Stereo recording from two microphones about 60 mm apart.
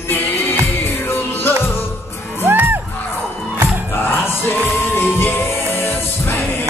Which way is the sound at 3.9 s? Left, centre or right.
Left.